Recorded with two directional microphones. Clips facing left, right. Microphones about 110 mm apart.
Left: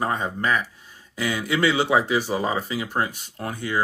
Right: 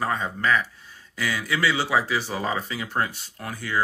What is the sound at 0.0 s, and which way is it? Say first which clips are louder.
Speech: left 1 dB; 15° left (ahead or behind).